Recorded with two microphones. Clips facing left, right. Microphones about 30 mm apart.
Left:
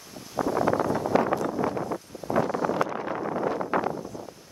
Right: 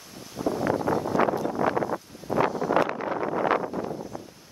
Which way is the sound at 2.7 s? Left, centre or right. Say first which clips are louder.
Right 3 dB; right.